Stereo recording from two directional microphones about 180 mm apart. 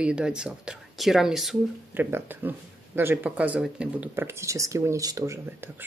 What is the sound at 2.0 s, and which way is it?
Speech, 10° right (ahead or behind).